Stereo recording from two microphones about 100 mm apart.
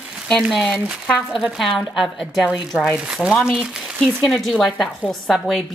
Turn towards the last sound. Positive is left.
turn(degrees=0)  # may be behind; listen again after turning